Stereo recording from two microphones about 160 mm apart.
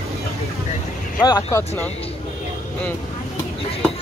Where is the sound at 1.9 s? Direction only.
40° left (ahead or behind).